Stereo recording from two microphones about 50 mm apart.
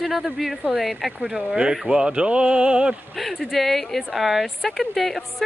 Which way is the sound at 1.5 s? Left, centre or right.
Centre.